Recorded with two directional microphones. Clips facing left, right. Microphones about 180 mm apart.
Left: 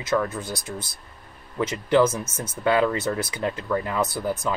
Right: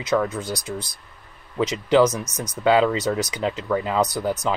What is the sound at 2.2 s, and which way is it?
Speech, 40° right (ahead or behind).